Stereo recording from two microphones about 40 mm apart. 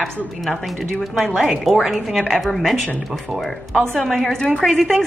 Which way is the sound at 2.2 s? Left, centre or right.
Centre.